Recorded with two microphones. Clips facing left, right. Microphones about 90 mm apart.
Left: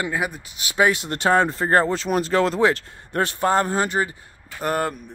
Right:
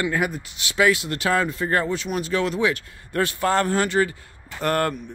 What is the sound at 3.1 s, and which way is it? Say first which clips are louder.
A man's voice: left 1 dB; 25° left (ahead or behind).